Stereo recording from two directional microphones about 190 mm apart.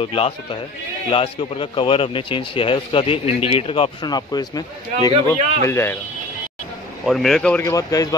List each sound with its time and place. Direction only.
0.0 s speech: 30° left (ahead or behind)
7.1 s speech: centre (ahead or behind); by 8.1 s 20° left (ahead or behind)